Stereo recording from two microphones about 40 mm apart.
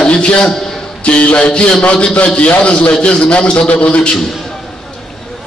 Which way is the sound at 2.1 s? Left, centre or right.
Left.